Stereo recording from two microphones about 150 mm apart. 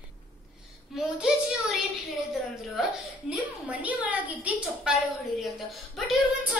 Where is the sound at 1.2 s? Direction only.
5° right (ahead or behind).